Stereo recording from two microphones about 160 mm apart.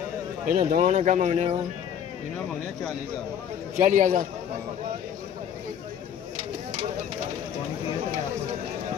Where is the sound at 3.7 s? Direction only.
55° right (ahead or behind).